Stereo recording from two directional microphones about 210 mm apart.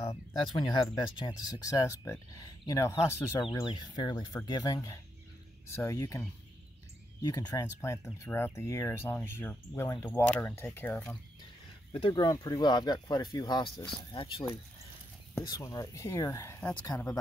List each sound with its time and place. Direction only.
0.1 s speech: 20° left (ahead or behind)
11.9 s speech: 25° left (ahead or behind)